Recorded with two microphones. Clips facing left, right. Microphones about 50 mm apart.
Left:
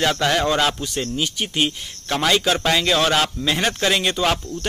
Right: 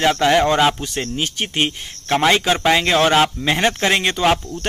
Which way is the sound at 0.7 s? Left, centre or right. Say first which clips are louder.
Right 1 dB; right.